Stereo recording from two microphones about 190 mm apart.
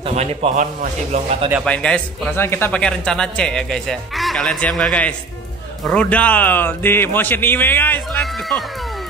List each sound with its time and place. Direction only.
0.0 s a man's voice: 35° right (ahead or behind)
1.6 s speech: 5° left (ahead or behind)